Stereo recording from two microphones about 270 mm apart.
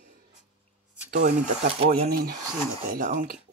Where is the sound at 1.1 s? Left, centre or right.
Right.